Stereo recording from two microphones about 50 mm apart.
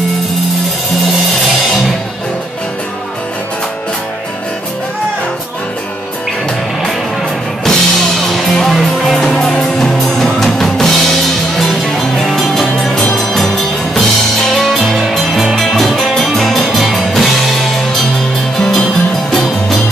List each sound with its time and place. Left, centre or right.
7.6 s music: centre
18.6 s music: centre